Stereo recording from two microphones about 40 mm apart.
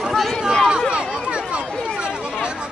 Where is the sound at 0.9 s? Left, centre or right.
Right.